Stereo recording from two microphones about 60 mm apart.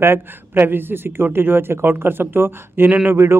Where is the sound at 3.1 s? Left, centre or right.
Right.